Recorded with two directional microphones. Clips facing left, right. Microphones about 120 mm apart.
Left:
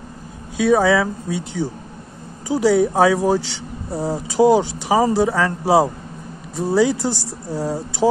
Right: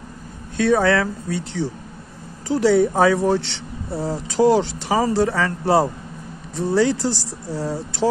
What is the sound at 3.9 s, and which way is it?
Speech, 20° left (ahead or behind).